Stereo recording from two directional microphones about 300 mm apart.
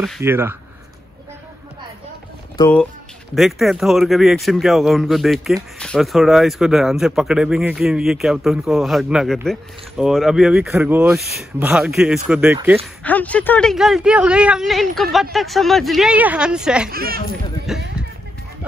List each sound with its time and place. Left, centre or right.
0.0 s speech: centre
2.5 s speech: centre
13.0 s speech: centre
16.9 s speech: right
17.7 s speech: centre